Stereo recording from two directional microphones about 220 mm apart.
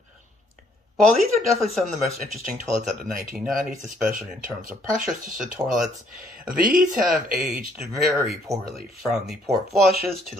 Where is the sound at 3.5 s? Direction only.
40° right (ahead or behind).